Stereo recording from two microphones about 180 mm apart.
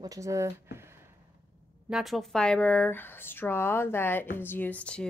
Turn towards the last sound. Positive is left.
turn(degrees=5)  # may be behind; listen again after turning